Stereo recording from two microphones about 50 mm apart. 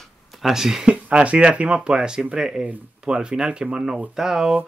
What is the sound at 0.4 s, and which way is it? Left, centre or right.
Speech, centre.